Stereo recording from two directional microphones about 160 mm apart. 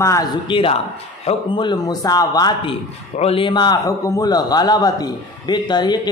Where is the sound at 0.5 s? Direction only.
35° left (ahead or behind).